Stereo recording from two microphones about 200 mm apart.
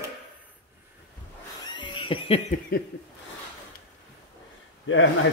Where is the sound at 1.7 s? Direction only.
25° left (ahead or behind).